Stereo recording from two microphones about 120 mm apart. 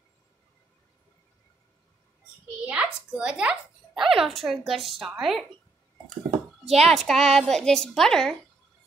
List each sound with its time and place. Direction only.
2.6 s a child's voice: 10° right (ahead or behind)
6.3 s a sound: 60° right (ahead or behind)
6.9 s a woman's voice: 5° left (ahead or behind)